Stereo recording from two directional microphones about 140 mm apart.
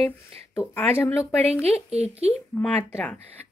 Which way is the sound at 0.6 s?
15° left (ahead or behind).